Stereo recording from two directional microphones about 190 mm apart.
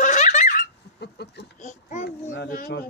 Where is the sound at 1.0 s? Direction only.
60° left (ahead or behind).